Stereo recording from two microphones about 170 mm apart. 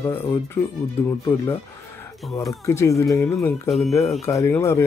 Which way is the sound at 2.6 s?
15° left (ahead or behind).